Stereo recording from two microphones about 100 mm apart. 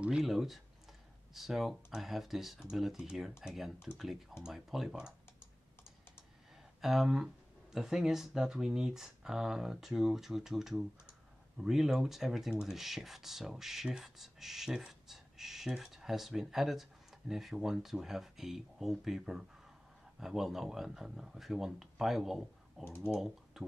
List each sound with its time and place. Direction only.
0.0 s speech: 5° right (ahead or behind)
6.8 s speech: centre (ahead or behind)
22.8 s speech: 25° left (ahead or behind)